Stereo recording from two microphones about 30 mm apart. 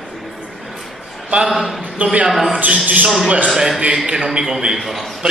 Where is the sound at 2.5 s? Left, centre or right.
Right.